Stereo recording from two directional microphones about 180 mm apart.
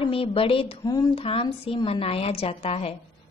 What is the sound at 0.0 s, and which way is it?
A woman's voice, 30° left (ahead or behind).